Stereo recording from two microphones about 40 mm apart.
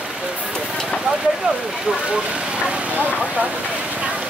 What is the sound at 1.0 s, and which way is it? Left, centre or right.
Speech, centre.